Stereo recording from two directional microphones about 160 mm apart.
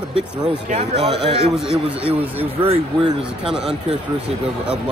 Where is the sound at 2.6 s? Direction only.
35° right (ahead or behind).